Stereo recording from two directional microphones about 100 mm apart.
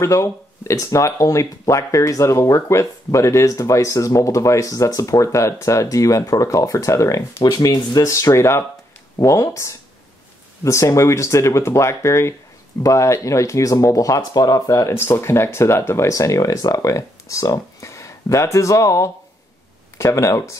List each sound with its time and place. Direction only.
0.0 s speech: 30° left (ahead or behind)